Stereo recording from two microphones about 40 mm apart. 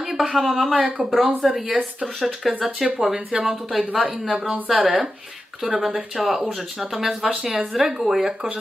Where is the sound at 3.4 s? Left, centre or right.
Centre.